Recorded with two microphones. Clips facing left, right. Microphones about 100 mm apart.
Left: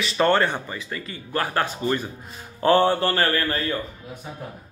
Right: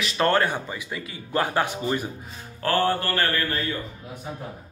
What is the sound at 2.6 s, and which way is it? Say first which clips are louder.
Mantra: left 5 dB; 20° left (ahead or behind).